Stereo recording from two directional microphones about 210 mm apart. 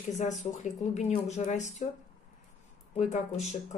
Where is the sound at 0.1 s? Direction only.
35° left (ahead or behind).